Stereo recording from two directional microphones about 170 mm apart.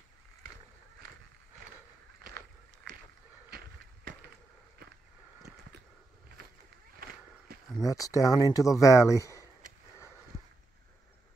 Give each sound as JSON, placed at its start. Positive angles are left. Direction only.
{"t": 3.4, "sound": "skateboard", "side_deg": -65}
{"t": 7.7, "sound": "speech", "side_deg": 20}